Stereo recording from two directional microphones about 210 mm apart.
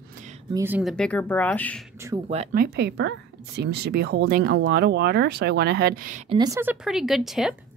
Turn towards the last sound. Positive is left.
turn(degrees=0)  # may be behind; listen again after turning